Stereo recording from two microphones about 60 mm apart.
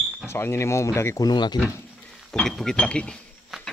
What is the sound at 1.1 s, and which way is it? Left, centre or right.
Speech, left.